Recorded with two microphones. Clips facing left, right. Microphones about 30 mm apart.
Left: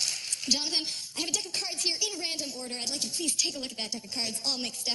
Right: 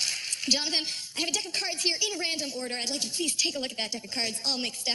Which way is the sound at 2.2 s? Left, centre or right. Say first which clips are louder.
Right 4 dB; right.